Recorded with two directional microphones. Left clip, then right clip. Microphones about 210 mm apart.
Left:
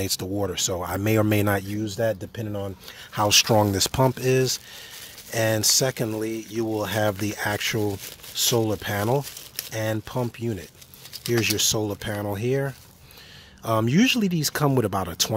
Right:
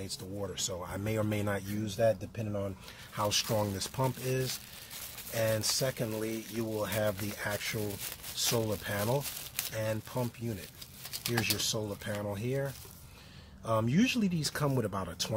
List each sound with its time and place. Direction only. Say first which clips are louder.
0.0 s speech: left 13 dB; 40° left (ahead or behind)